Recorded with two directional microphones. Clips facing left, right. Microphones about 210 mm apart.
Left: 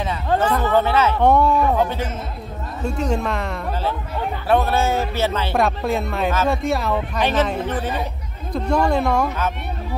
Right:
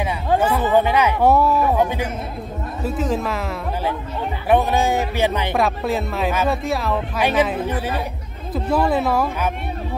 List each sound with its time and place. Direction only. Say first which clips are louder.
0.0 s speech: right 1 dB; 10° right (ahead or behind)
2.8 s speech: even; 5° right (ahead or behind)
4.5 s speech: right 1 dB; 15° right (ahead or behind)
5.6 s speech: left 1 dB; centre (ahead or behind)